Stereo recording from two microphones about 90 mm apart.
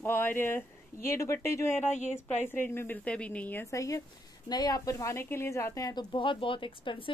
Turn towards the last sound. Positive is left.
turn(degrees=70)  # may be behind; listen again after turning